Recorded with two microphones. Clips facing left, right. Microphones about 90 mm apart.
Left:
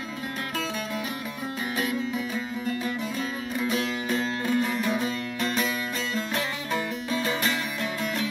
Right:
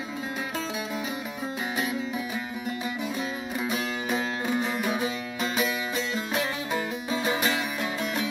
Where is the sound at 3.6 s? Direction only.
15° right (ahead or behind).